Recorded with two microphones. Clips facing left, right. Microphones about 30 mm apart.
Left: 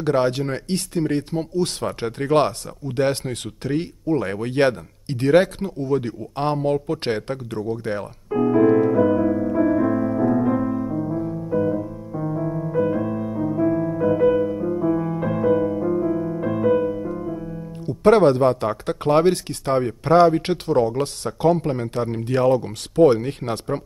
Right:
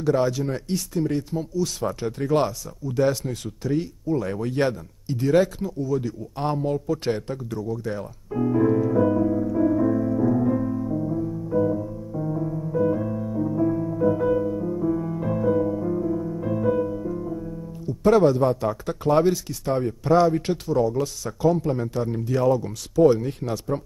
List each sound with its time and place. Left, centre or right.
0.0 s speech: left
8.9 s music: left
17.8 s speech: left